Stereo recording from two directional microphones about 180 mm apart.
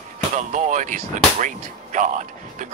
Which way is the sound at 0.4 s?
45° right (ahead or behind).